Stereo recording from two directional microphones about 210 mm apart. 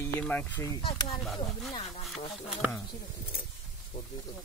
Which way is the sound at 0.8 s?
25° left (ahead or behind).